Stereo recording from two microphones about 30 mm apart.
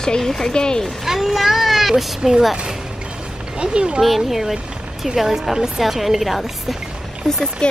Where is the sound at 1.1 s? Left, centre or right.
Centre.